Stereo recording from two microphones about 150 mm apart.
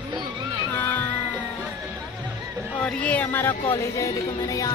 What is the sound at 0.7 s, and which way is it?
Speech, 10° left (ahead or behind).